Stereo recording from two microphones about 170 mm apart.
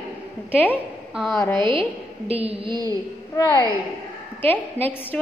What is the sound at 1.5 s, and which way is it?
A woman's voice, 30° right (ahead or behind).